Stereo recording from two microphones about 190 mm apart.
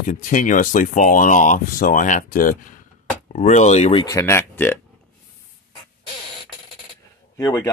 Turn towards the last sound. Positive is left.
turn(degrees=15)  # may be behind; listen again after turning